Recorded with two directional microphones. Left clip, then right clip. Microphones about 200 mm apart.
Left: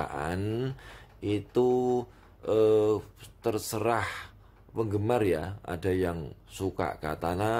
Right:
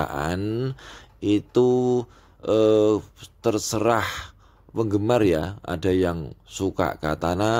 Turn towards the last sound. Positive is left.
turn(degrees=-35)  # may be behind; listen again after turning